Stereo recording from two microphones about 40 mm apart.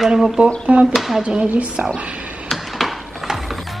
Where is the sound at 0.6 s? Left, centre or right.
Right.